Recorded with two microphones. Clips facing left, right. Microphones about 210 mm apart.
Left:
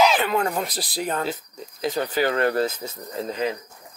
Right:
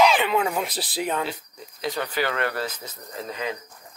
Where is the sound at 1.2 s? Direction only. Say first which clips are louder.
Left 4 dB; 45° left (ahead or behind).